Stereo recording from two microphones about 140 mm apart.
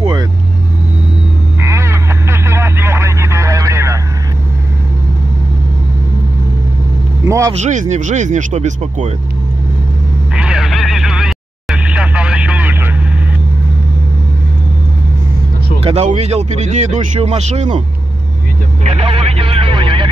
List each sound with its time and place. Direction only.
1.6 s vehicle: 20° right (ahead or behind)
7.2 s vehicle: 20° right (ahead or behind)
7.5 s speech: 60° right (ahead or behind)
10.3 s vehicle: 5° right (ahead or behind)
15.8 s speech: 50° right (ahead or behind)
18.9 s speech: 45° right (ahead or behind)